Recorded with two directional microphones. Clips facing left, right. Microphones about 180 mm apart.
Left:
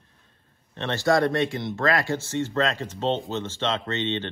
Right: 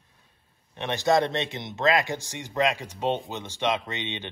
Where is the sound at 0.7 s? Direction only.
15° right (ahead or behind).